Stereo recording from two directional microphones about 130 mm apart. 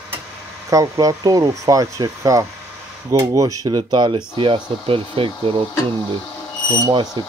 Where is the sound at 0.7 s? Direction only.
25° right (ahead or behind); by 5.6 s 45° right (ahead or behind).